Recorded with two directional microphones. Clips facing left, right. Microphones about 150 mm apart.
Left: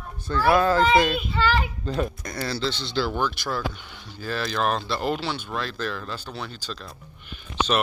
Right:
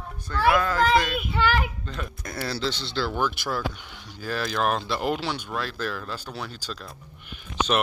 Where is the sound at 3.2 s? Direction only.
5° right (ahead or behind).